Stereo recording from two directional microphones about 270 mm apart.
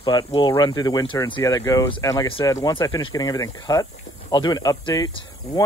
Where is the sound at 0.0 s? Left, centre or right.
Centre.